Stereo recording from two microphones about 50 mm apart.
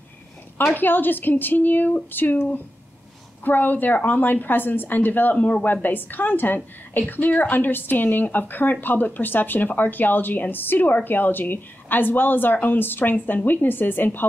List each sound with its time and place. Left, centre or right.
0.7 s a woman's voice: left